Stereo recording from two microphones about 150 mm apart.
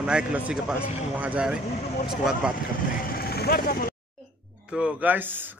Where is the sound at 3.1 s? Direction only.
90° left.